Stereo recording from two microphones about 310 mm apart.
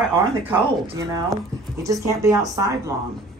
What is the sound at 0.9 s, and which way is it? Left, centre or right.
Speech, centre.